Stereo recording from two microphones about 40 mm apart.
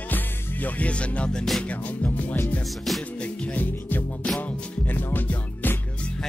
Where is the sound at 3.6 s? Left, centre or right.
Left.